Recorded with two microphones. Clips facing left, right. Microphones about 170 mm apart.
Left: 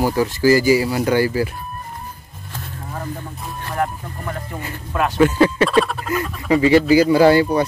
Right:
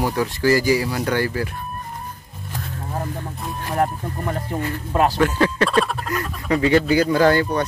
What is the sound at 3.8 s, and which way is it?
Speech, 30° right (ahead or behind).